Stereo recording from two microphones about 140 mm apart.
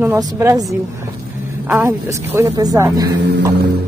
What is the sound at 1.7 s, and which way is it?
A woman's voice, 15° right (ahead or behind).